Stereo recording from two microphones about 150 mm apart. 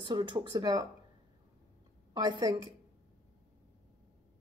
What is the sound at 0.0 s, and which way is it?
Speech, 30° right (ahead or behind).